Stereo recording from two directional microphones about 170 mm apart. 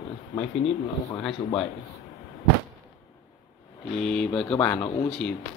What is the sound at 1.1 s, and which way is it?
Speech, 5° left (ahead or behind).